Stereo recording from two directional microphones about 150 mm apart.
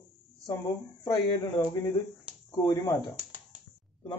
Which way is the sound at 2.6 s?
25° left (ahead or behind).